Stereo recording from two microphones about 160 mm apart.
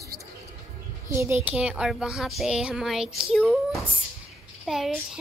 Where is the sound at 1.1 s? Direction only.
15° right (ahead or behind).